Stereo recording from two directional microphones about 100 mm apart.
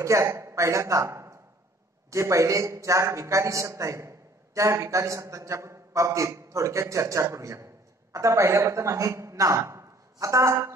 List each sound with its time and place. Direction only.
0.0 s a man's voice: 30° right (ahead or behind)